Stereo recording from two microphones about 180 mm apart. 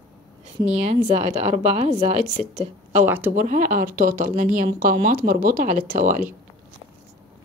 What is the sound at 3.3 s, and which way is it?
Speech, 50° right (ahead or behind).